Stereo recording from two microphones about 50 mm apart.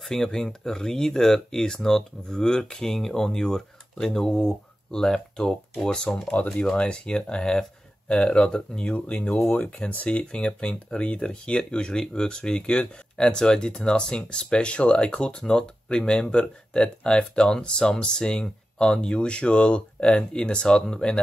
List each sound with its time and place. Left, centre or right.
0.0 s speech: centre
6.2 s speech: left
8.9 s speech: left